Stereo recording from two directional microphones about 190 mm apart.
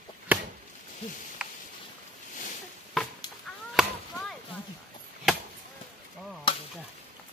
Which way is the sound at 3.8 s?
Centre (ahead or behind).